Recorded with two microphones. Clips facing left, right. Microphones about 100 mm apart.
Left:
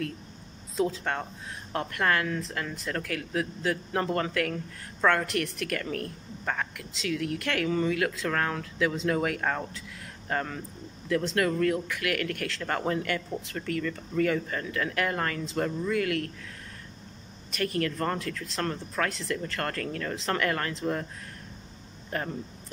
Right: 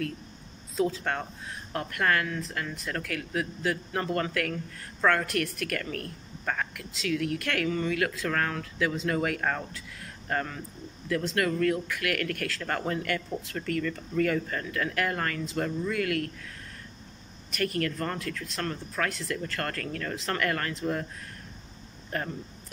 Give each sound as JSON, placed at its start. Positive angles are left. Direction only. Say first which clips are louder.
{"t": 0.7, "sound": "speech", "louder": "even", "side_deg": 20}
{"t": 17.5, "sound": "speech", "louder": "even", "side_deg": 25}